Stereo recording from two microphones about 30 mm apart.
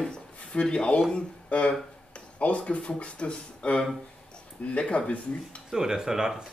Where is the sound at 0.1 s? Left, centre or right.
Left.